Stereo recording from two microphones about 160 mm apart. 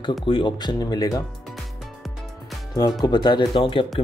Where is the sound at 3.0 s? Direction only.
25° left (ahead or behind).